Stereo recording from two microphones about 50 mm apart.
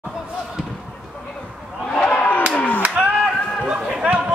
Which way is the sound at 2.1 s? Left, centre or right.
Left.